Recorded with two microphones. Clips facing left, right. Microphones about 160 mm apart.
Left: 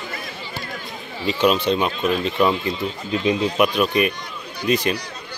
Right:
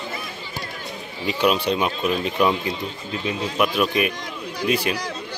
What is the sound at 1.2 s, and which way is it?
Speech, 10° right (ahead or behind).